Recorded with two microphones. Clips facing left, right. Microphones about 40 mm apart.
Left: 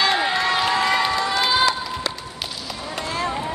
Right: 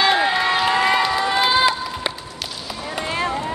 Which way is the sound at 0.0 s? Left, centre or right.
Centre.